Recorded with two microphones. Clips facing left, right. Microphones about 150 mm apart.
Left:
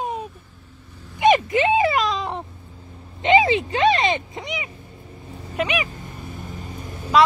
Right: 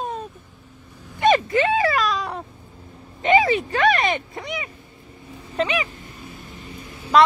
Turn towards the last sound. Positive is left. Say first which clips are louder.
# left 3 dB
turn(degrees=45)  # may be behind; listen again after turning